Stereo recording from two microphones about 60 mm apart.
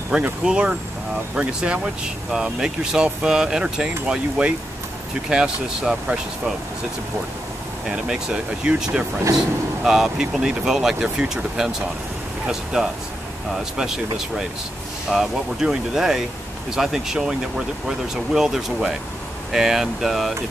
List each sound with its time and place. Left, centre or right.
0.1 s speech: centre
7.8 s speech: centre
12.7 s speech: centre